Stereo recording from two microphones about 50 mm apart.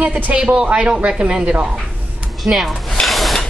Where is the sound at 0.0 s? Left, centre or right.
Right.